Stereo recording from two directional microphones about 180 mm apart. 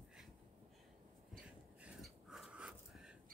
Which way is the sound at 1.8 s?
5° right (ahead or behind).